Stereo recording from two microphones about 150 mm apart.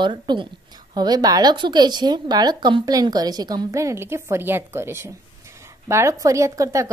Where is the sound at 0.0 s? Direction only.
30° right (ahead or behind).